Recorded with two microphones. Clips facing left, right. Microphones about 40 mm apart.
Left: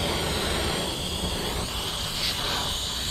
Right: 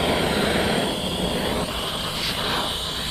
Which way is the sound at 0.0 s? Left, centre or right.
Right.